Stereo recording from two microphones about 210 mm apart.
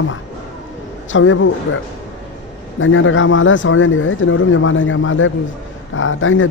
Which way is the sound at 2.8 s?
70° left (ahead or behind).